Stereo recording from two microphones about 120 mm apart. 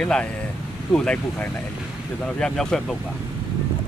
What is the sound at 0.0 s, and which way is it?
Speech, 10° left (ahead or behind).